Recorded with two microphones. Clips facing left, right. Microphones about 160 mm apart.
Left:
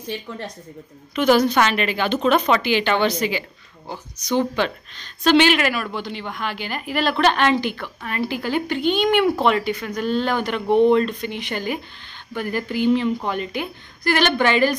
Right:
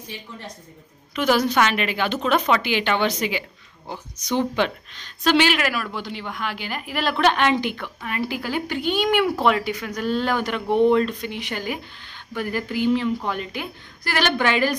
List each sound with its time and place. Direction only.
1.1 s a woman's voice: 5° right (ahead or behind)